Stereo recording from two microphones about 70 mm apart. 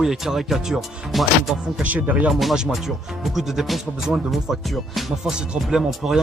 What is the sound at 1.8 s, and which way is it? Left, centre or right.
Speech, right.